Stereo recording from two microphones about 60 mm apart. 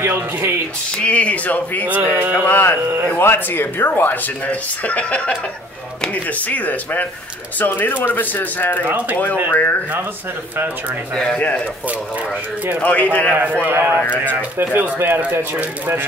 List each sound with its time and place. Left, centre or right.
0.0 s speech: right
0.9 s speech: left
1.9 s speech: right
2.4 s speech: left
6.4 s speech: left
8.8 s speech: right
9.5 s speech: left
11.3 s speech: left
12.8 s speech: left
13.3 s speech: right
13.7 s speech: right
13.9 s speech: left
15.0 s speech: right